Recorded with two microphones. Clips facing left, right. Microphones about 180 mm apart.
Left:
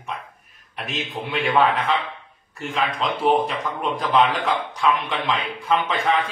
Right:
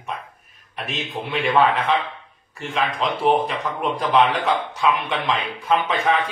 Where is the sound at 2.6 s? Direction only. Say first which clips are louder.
Right 1 dB; centre (ahead or behind).